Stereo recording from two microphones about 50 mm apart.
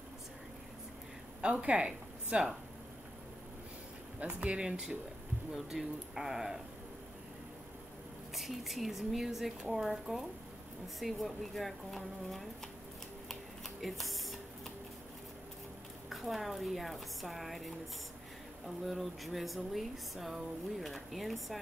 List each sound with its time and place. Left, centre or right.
1.4 s speech: right
4.2 s speech: right
4.6 s speech: centre
8.4 s speech: centre
13.3 s a sound: centre
16.1 s speech: centre
18.9 s speech: centre